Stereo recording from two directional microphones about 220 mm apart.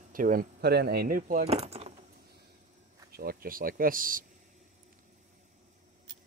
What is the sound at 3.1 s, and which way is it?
Speech, 40° right (ahead or behind).